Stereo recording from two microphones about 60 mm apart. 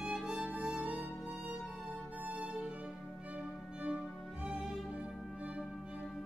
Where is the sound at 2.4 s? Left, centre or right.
Centre.